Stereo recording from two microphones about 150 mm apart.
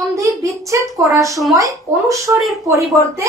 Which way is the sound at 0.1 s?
20° right (ahead or behind).